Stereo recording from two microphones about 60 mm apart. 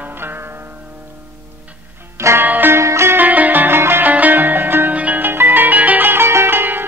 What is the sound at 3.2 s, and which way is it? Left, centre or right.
Music, right.